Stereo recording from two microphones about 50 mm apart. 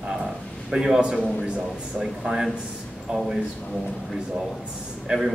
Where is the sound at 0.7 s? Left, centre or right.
Centre.